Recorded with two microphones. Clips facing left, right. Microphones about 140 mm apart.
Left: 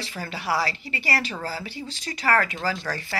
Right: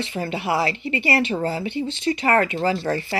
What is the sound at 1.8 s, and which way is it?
Speech, 40° left (ahead or behind).